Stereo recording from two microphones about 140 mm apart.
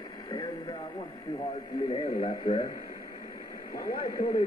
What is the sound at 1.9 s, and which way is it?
Radio, 30° left (ahead or behind).